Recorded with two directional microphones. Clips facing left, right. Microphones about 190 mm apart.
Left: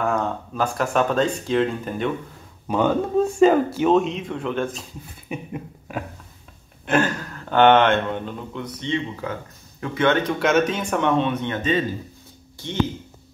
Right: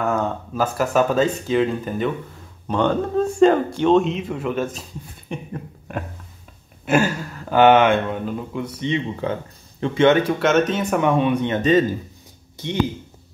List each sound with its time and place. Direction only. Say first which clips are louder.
0.0 s speech: right 1 dB; 5° right (ahead or behind)
6.9 s speech: right 2 dB; 10° right (ahead or behind)
9.2 s speech: right 5 dB; 25° right (ahead or behind)
10.1 s speech: right 2 dB; 5° right (ahead or behind)